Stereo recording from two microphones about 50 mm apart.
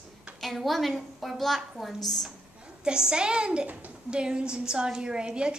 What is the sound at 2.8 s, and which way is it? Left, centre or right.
A woman's voice, centre.